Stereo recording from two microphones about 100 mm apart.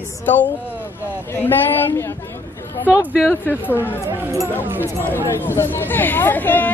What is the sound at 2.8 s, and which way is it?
Speech, 15° right (ahead or behind).